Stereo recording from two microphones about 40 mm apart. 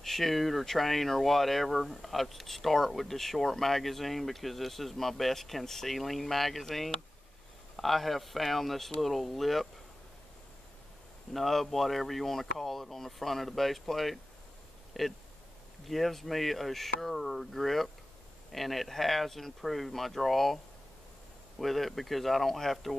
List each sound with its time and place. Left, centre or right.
0.0 s speech: centre
11.3 s speech: centre